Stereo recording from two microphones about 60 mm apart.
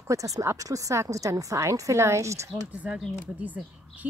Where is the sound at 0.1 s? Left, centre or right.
Right.